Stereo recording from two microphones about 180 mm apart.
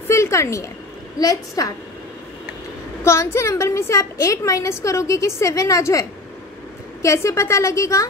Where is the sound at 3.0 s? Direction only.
15° left (ahead or behind).